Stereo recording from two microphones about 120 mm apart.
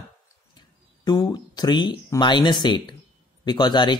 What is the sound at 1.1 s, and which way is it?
Speech, 35° left (ahead or behind).